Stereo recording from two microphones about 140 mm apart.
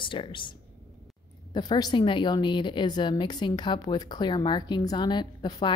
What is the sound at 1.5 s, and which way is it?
A woman's voice, 30° left (ahead or behind).